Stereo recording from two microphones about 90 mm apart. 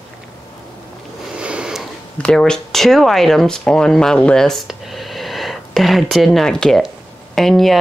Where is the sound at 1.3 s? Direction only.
10° right (ahead or behind).